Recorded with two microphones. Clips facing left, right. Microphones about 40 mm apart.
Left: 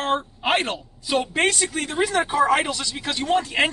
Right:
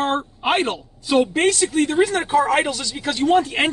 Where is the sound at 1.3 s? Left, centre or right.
Centre.